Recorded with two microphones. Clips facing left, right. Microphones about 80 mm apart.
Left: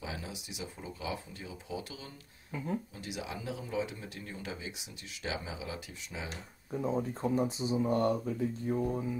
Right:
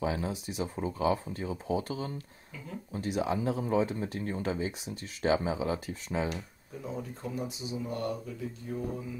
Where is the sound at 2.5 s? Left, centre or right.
Left.